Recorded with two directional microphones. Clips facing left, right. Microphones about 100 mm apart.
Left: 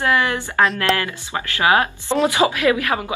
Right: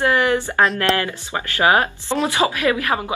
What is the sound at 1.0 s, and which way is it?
Speech, 25° right (ahead or behind).